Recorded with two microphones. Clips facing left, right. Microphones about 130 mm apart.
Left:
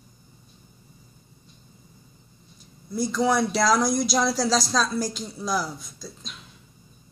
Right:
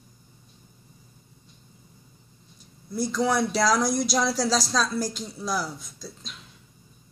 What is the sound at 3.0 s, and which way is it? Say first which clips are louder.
Speech: left 2 dB; 10° left (ahead or behind).